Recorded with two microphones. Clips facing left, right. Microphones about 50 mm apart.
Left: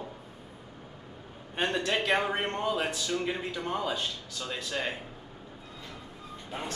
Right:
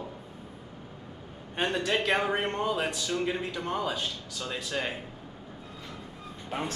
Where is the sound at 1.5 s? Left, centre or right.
Centre.